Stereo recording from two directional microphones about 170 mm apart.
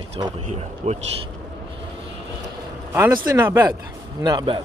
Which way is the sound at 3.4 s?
15° right (ahead or behind).